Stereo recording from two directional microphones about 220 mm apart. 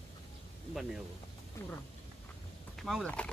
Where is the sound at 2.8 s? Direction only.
Centre (ahead or behind).